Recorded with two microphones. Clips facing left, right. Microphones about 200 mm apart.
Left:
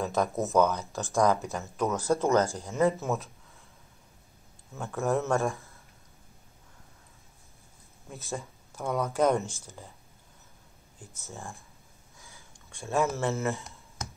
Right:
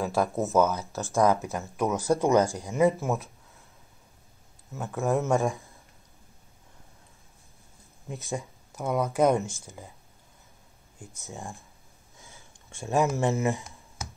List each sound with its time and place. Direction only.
0.0 s speech: centre (ahead or behind)
4.7 s speech: centre (ahead or behind)
5.2 s speech: 15° right (ahead or behind)
8.1 s speech: 15° right (ahead or behind)
9.7 s speech: 15° right (ahead or behind)
11.1 s speech: 15° right (ahead or behind)
12.8 s speech: 15° right (ahead or behind)